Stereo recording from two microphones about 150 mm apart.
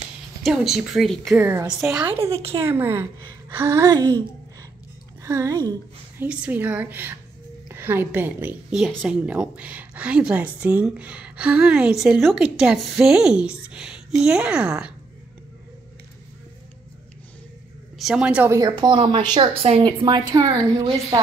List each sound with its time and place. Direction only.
0.4 s speech: centre (ahead or behind)
1.3 s a woman's voice: 15° right (ahead or behind)
5.2 s a woman's voice: 20° right (ahead or behind)
6.1 s a woman's voice: 10° right (ahead or behind)
17.9 s a woman's voice: 5° right (ahead or behind)
18.7 s a woman's voice: 35° right (ahead or behind)